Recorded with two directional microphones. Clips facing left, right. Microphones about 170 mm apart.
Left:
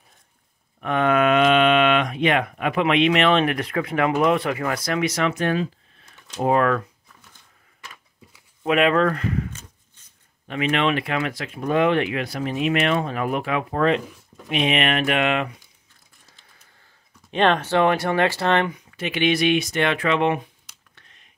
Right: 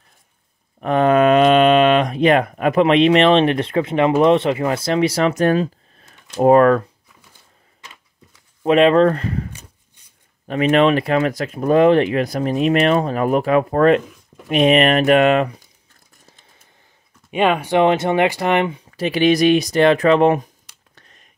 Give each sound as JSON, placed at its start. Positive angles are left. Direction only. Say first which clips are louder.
{"t": 0.7, "sound": "speech", "louder": "right 5 dB", "side_deg": -35}
{"t": 8.6, "sound": "speech", "louder": "right 6 dB", "side_deg": -30}
{"t": 9.5, "sound": "a sound", "louder": "right 1 dB", "side_deg": -15}
{"t": 10.5, "sound": "speech", "louder": "right 7 dB", "side_deg": -40}
{"t": 17.3, "sound": "speech", "louder": "right 2 dB", "side_deg": -10}
{"t": 18.7, "sound": "speech", "louder": "right 7 dB", "side_deg": -35}
{"t": 20.9, "sound": "a sound", "louder": "right 4 dB", "side_deg": -40}